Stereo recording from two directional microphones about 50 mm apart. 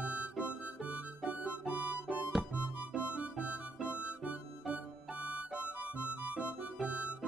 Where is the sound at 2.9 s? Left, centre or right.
Right.